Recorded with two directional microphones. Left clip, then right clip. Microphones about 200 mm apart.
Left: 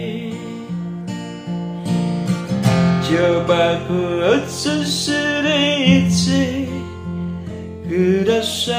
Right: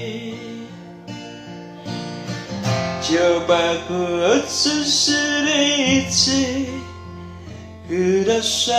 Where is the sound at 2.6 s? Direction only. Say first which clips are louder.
Left 3 dB; 45° left (ahead or behind).